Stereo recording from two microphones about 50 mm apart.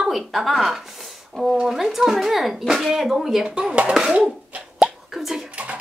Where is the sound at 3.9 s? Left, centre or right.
Centre.